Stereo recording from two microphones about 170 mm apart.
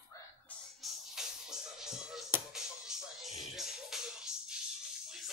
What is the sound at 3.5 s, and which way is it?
Music, centre (ahead or behind).